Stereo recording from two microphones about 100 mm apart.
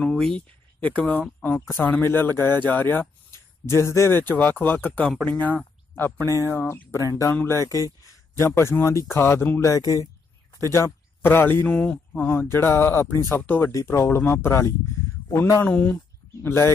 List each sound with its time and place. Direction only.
0.0 s speech: 5° left (ahead or behind)
5.9 s speech: 25° left (ahead or behind)
13.7 s speech: 30° left (ahead or behind)
15.6 s speech: 15° left (ahead or behind)
16.4 s speech: 25° left (ahead or behind)